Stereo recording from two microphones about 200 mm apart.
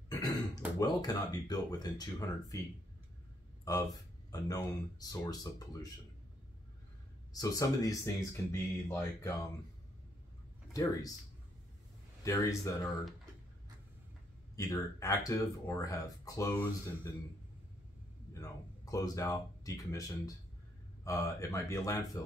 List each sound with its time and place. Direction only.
0.1 s throat clearing: 20° left (ahead or behind)
0.7 s speech: 20° left (ahead or behind)
4.3 s speech: 20° left (ahead or behind)
7.3 s speech: 15° left (ahead or behind)
10.7 s speech: 15° left (ahead or behind)
12.3 s speech: 15° left (ahead or behind)
14.5 s speech: 15° left (ahead or behind)
18.3 s speech: 15° left (ahead or behind)